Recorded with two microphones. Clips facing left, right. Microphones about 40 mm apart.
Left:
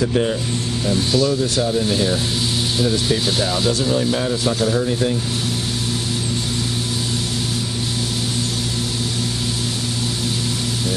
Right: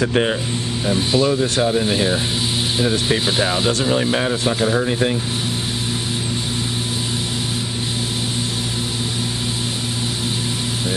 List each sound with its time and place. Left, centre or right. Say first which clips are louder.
0.0 s speech: right 1 dB; right
0.8 s speech: right 1 dB; right
3.7 s speech: right 1 dB; right